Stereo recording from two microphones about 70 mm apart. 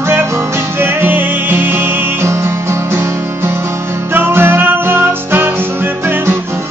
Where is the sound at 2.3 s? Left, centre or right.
Right.